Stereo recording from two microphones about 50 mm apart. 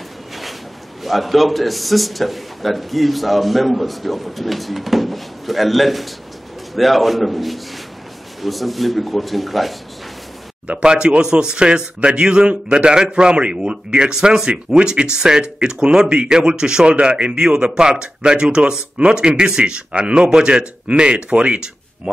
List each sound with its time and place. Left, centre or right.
1.0 s a man's voice: centre
10.7 s speech: centre